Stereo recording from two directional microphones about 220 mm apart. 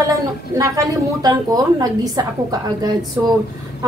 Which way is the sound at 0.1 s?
15° right (ahead or behind).